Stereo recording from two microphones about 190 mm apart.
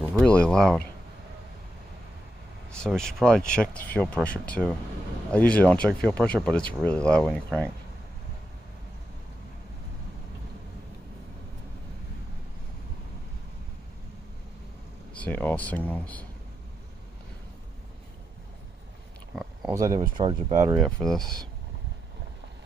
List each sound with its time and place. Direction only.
0.0 s speech: 5° left (ahead or behind)
2.7 s speech: 5° left (ahead or behind)
15.1 s speech: 10° left (ahead or behind)
19.7 s speech: 20° right (ahead or behind)
20.8 s speech: centre (ahead or behind)